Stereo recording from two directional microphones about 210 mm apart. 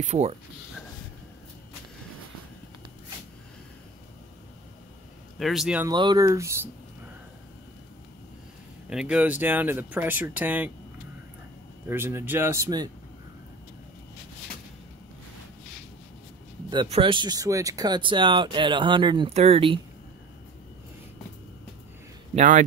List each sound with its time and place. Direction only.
0.0 s speech: 30° right (ahead or behind)
5.4 s speech: centre (ahead or behind)
5.9 s speech: 20° right (ahead or behind)
8.8 s speech: 5° right (ahead or behind)
11.9 s speech: 10° right (ahead or behind)
16.7 s speech: 25° right (ahead or behind)
22.3 s a man's voice: 40° right (ahead or behind)